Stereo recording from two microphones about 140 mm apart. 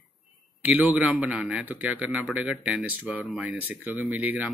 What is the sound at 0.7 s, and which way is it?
A man's voice, 10° right (ahead or behind).